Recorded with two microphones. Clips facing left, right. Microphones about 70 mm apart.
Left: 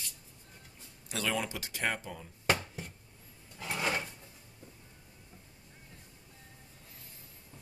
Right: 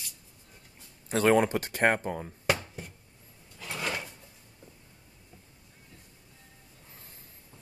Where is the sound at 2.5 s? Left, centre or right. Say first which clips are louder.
Right 1 dB; centre.